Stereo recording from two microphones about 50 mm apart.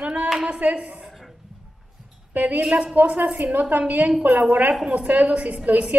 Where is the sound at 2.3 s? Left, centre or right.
Right.